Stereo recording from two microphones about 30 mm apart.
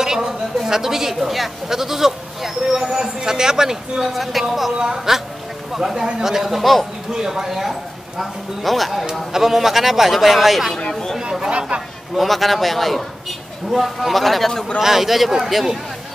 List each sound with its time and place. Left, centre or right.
0.0 s a sound: centre
0.6 s speech: centre
4.0 s speech: centre
4.7 s speech: centre
7.1 s speech: centre
7.4 s speech: centre
9.3 s speech: centre
10.9 s a sound: left
12.2 s speech: centre
14.8 s speech: centre